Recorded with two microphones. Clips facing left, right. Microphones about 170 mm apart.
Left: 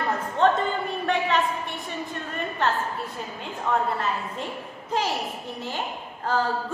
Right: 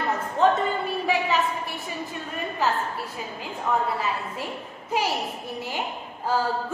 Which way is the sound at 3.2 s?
Centre (ahead or behind).